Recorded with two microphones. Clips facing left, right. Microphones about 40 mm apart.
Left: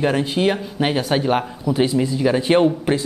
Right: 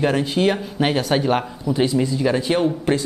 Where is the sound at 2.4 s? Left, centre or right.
Left.